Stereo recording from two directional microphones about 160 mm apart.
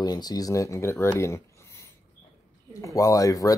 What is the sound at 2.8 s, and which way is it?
Speech, 20° left (ahead or behind).